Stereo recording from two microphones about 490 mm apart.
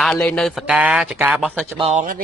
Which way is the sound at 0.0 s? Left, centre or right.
Centre.